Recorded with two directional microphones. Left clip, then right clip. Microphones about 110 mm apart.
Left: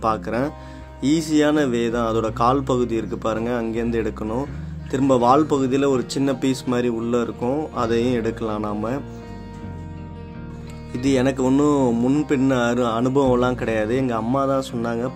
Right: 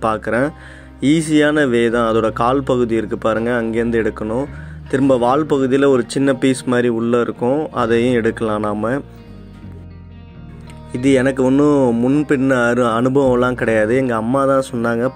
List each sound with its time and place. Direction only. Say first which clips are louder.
0.0 s speech: right 5 dB; 40° right (ahead or behind)
10.9 s speech: right 5 dB; 35° right (ahead or behind)
12.3 s speech: right 5 dB; 45° right (ahead or behind)